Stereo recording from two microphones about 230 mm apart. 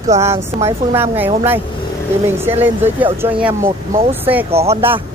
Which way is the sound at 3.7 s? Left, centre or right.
Right.